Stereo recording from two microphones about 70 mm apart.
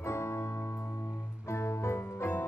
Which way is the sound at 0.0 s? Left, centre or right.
Left.